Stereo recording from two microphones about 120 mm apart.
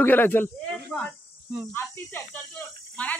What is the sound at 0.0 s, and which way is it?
Speech, 15° left (ahead or behind).